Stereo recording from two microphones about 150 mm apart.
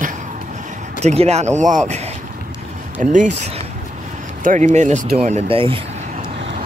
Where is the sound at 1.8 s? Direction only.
45° right (ahead or behind).